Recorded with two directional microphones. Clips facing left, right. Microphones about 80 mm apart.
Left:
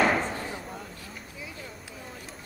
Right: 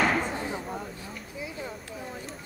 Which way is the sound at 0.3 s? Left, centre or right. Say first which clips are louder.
Right 2 dB; centre.